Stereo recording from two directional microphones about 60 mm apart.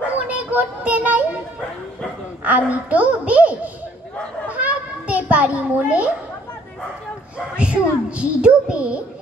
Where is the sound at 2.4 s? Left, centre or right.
Right.